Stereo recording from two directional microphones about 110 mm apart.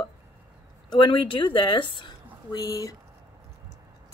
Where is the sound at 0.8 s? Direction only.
45° left (ahead or behind).